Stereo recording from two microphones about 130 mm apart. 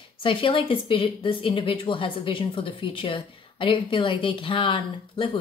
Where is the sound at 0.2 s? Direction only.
40° left (ahead or behind).